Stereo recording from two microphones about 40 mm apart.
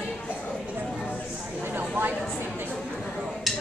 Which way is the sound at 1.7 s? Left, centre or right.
Right.